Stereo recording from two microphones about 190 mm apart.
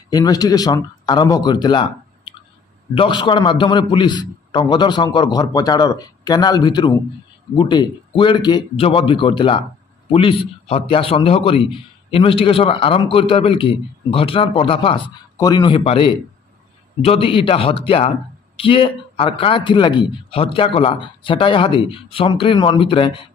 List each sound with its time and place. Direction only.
0.1 s a man's voice: 20° left (ahead or behind)
10.7 s a man's voice: 30° left (ahead or behind)